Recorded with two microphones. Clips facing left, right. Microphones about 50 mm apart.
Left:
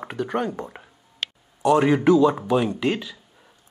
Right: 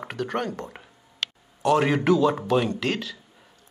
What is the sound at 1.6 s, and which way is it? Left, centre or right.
Speech, centre.